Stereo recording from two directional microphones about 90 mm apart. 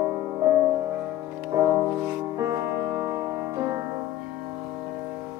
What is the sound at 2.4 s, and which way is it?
Music, 30° right (ahead or behind).